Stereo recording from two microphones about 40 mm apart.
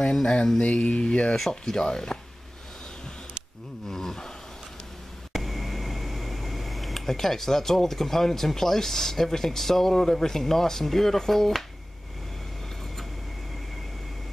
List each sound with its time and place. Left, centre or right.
0.0 s speech: centre
3.9 s a sound: centre
5.3 s speech: centre